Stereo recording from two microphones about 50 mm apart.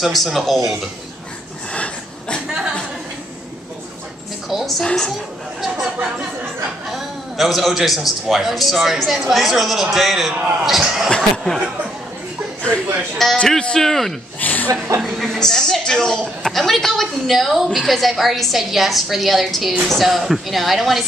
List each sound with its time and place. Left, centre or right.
0.0 s a man's voice: centre
1.7 s a sound: centre
2.4 s a sound: centre
4.5 s a woman's voice: centre
4.8 s a man's voice: centre
5.6 s a man's voice: centre
11.1 s a man's voice: centre
13.2 s a man's voice: centre
13.6 s speech: centre
13.8 s a man's voice: centre
14.4 s chuckle: left
15.0 s a man's voice: centre